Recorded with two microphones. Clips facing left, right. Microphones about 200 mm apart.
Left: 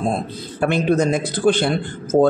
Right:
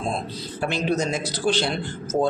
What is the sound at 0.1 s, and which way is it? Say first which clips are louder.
Speech: left 5 dB; 55° left (ahead or behind).